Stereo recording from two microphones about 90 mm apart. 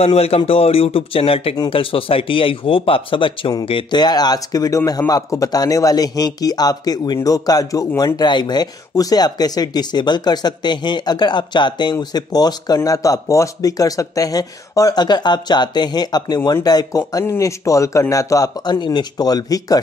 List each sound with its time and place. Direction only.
0.2 s speech: 90° left
4.0 s speech: 50° left (ahead or behind)
8.0 s a man's voice: 55° left (ahead or behind)